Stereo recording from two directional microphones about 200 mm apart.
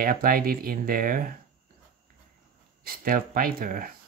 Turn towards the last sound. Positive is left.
turn(degrees=-45)  # may be behind; listen again after turning